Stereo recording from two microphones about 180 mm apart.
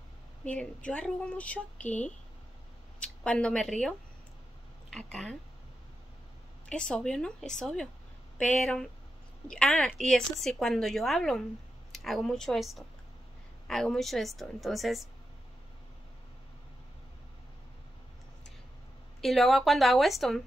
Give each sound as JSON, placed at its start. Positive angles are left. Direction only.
{"t": 0.5, "sound": "speech", "side_deg": 5}
{"t": 4.9, "sound": "a woman's voice", "side_deg": 5}
{"t": 6.7, "sound": "a woman's voice", "side_deg": 5}
{"t": 19.2, "sound": "a woman's voice", "side_deg": 0}